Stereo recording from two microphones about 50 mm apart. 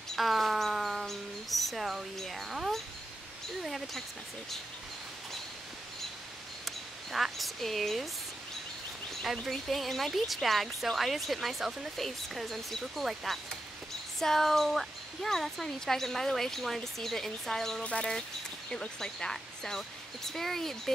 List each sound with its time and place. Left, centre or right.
0.1 s a sound: centre
0.7 s a sound: centre
2.1 s speech: centre
6.6 s speech: centre
9.2 s speech: centre
14.2 s speech: centre
17.8 s speech: left; by 20.9 s centre